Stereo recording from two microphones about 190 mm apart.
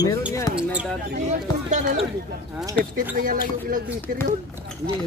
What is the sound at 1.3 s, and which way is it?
Speech, 40° right (ahead or behind).